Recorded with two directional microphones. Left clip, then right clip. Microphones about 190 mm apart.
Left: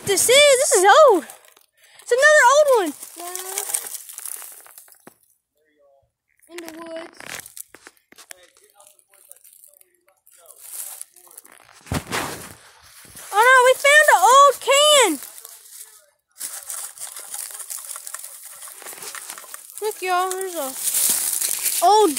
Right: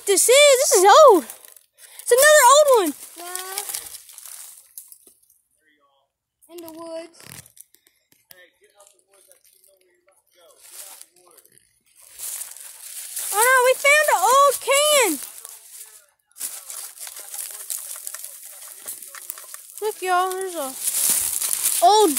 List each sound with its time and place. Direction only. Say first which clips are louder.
0.0 s speech: even; 20° right (ahead or behind)
0.8 s speech: right 1 dB; 20° right (ahead or behind)
3.4 s bird: left 2 dB; 20° left (ahead or behind)
10.6 s a sound: left 4 dB; 45° left (ahead or behind)
12.8 s dog: right 9 dB; 5° right (ahead or behind)
13.3 s speech: left 3 dB; 10° left (ahead or behind)
16.3 s a sound: left 2 dB; 20° left (ahead or behind)
19.8 s speech: right 1 dB; centre (ahead or behind)
21.6 s a sound: right 1 dB; 5° right (ahead or behind)